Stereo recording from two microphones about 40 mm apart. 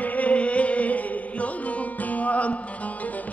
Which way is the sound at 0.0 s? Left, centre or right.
Left.